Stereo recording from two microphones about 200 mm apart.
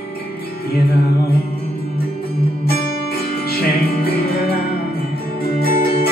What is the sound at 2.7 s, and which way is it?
Music, 50° left (ahead or behind).